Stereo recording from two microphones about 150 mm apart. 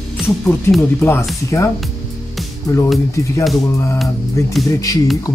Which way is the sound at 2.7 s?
20° left (ahead or behind).